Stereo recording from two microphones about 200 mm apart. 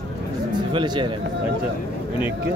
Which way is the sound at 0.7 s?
25° right (ahead or behind).